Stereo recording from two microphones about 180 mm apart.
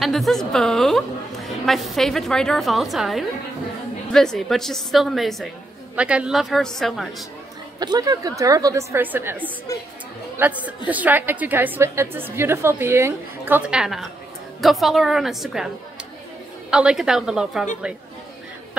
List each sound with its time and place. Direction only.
0.0 s a woman's voice: centre (ahead or behind)
7.8 s a woman's voice: 25° right (ahead or behind); by 15.7 s centre (ahead or behind)
16.7 s a woman's voice: 5° right (ahead or behind)